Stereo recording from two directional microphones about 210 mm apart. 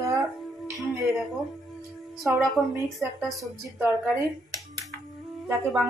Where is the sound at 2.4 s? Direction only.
Centre (ahead or behind).